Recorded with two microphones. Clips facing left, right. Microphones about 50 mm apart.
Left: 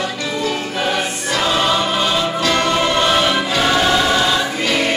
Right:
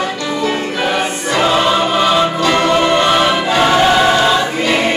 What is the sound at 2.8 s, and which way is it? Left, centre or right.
Choir, right.